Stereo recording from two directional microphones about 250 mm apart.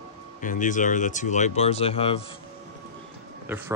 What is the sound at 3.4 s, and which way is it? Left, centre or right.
Speech, centre.